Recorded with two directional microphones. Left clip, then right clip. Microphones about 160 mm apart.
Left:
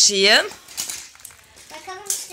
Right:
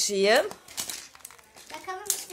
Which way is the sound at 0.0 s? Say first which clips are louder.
Left 7 dB; centre (ahead or behind).